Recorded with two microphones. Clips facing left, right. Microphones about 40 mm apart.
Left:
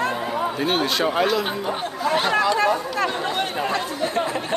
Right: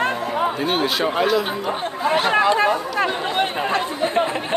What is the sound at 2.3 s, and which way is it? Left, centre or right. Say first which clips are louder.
Chatter: right 3 dB; right.